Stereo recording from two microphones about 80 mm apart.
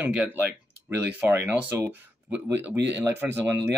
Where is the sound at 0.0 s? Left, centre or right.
Centre.